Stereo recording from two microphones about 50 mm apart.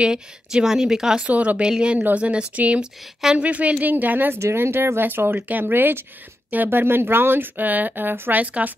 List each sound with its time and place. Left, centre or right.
0.0 s speech: centre
1.2 s speech: right
2.8 s speech: centre
3.3 s speech: right
3.9 s speech: right
4.6 s speech: right